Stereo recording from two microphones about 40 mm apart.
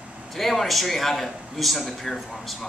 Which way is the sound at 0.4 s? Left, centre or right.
Centre.